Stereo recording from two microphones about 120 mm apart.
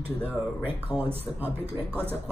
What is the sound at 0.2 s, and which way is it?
Speech, 10° right (ahead or behind).